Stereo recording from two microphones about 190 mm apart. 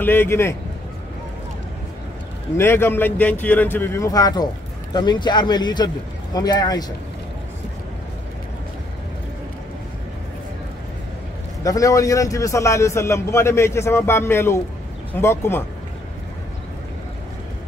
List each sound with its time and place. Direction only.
0.0 s a man's voice: 10° left (ahead or behind)
2.5 s a man's voice: 10° left (ahead or behind)
11.6 s a man's voice: 15° left (ahead or behind)